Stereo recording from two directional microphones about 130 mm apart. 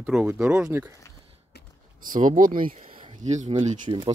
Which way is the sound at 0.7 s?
20° right (ahead or behind).